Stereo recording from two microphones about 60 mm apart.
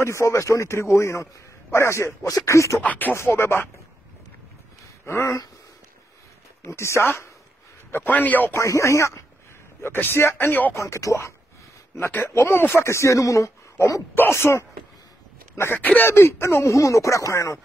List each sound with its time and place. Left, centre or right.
0.0 s a man's voice: left
2.8 s a man's voice: left
3.3 s speech: left
5.0 s speech: left
6.6 s speech: left
7.9 s a man's voice: left
8.5 s a man's voice: left
9.8 s speech: left
10.7 s a man's voice: left
12.4 s speech: left
14.1 s speech: left
15.7 s speech: left
16.1 s a man's voice: left